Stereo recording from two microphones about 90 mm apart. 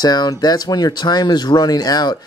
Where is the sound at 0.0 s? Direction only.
50° left (ahead or behind).